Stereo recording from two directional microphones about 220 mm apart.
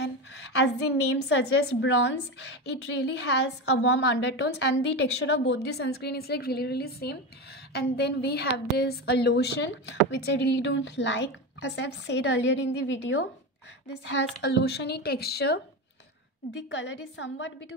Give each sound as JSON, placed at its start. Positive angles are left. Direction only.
{"t": 0.0, "sound": "a woman's voice", "side_deg": 50}
{"t": 16.7, "sound": "a woman's voice", "side_deg": 55}